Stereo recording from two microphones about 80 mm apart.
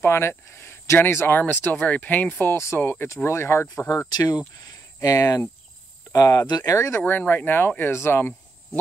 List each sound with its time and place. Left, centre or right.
0.0 s speech: left
2.5 s speech: left
4.1 s speech: left
5.0 s speech: left
6.7 s speech: left
7.0 s speech: left